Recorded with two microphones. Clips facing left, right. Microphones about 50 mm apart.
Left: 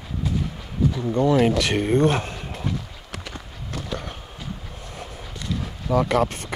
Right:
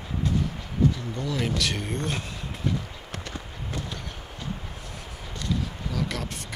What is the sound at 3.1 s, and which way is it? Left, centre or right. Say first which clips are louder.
Run: left 2 dB; centre.